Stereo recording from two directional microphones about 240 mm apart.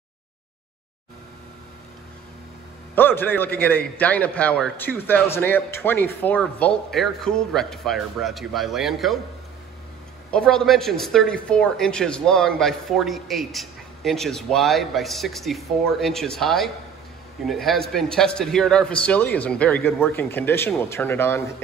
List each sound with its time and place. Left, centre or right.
2.9 s speech: centre
10.3 s speech: centre